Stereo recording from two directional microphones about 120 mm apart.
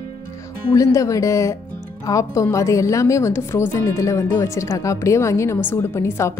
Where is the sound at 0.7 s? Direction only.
25° left (ahead or behind).